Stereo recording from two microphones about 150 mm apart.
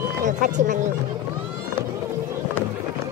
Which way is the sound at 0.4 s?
55° right (ahead or behind).